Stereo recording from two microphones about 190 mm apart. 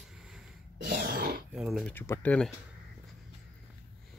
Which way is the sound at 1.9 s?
10° left (ahead or behind).